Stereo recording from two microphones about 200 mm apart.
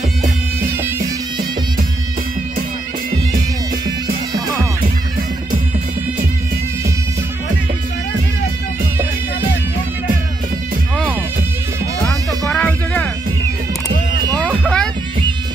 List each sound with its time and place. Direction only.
4.3 s music: 20° right (ahead or behind)
12.0 s music: 5° left (ahead or behind)